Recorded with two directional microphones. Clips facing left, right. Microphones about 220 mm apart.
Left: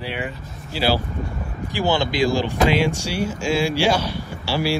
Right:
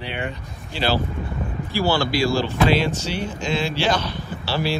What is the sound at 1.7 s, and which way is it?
Speech, 20° left (ahead or behind).